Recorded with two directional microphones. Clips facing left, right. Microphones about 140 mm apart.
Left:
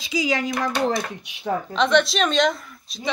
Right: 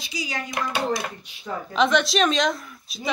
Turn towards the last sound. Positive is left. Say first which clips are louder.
# even
turn(degrees=0)  # may be behind; listen again after turning